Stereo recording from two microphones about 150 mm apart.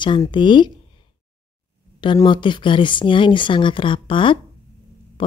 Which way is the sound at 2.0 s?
30° left (ahead or behind).